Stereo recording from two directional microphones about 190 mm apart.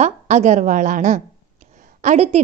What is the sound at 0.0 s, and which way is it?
A woman's voice, 40° right (ahead or behind).